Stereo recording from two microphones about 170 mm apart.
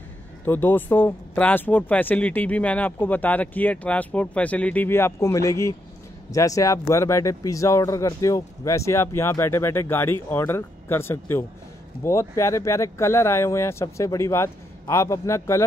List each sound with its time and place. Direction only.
0.5 s speech: 10° left (ahead or behind)